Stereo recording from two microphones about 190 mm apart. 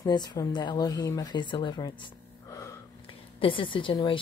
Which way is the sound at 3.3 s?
25° left (ahead or behind).